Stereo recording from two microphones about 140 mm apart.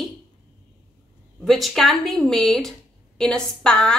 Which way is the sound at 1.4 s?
Centre (ahead or behind).